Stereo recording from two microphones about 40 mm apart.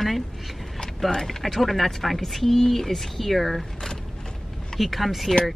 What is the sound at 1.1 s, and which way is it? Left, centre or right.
Speech, centre.